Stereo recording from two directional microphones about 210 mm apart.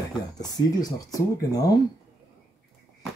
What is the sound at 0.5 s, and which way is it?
Speech, 15° left (ahead or behind).